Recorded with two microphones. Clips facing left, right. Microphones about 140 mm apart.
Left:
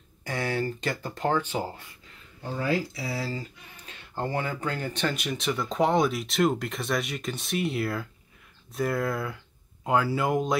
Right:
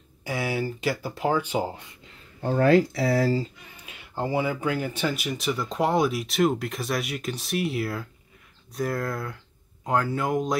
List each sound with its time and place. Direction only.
0.2 s speech: 10° right (ahead or behind)
2.4 s speech: 55° right (ahead or behind)
3.8 s speech: 10° right (ahead or behind)